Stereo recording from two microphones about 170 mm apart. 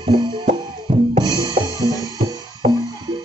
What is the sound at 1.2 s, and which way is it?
Drum kit, 25° right (ahead or behind).